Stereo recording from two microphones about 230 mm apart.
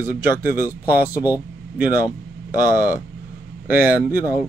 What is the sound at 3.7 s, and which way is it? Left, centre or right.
Speech, centre.